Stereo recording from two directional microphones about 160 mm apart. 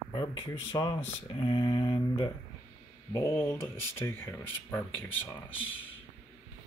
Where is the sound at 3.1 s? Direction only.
15° left (ahead or behind).